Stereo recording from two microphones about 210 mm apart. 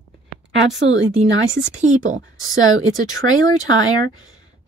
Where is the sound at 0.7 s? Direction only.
60° right (ahead or behind).